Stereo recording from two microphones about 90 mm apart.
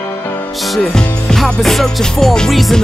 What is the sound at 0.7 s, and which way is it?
Music, 5° left (ahead or behind).